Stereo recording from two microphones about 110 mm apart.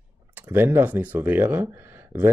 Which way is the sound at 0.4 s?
20° right (ahead or behind).